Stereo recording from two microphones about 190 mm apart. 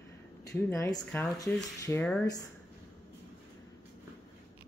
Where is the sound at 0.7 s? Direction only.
15° left (ahead or behind).